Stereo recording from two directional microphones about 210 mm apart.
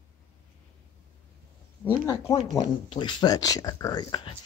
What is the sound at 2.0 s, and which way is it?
Speech, 15° left (ahead or behind).